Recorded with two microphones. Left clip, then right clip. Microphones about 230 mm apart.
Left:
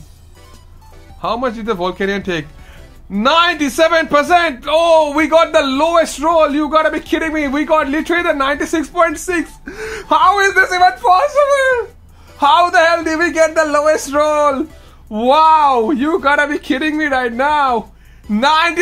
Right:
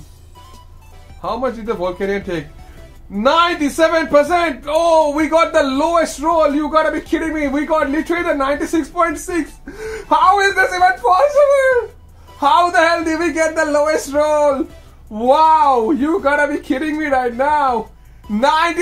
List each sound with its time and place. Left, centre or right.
1.2 s a man's voice: left